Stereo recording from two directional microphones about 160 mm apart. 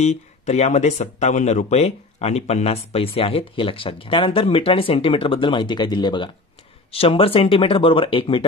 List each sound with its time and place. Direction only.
0.0 s speech: 45° left (ahead or behind)